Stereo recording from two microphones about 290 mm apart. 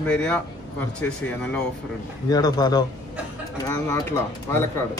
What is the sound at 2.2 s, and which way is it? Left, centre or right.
A man's voice, centre.